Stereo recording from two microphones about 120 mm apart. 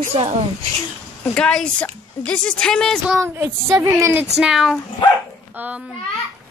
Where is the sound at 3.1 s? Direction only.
20° right (ahead or behind).